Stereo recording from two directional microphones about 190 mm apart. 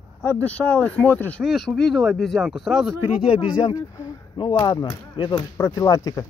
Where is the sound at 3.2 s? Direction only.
25° left (ahead or behind).